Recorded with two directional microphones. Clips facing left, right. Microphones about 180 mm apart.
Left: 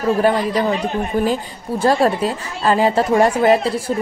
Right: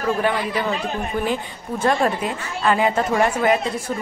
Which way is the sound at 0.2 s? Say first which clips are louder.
Left 5 dB; 35° left (ahead or behind).